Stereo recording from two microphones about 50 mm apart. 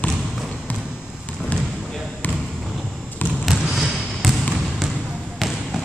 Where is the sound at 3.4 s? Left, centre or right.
Centre.